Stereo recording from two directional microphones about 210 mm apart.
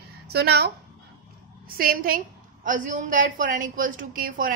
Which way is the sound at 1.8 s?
45° right (ahead or behind).